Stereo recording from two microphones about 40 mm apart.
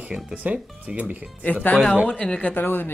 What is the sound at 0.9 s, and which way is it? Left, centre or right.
Speech, right.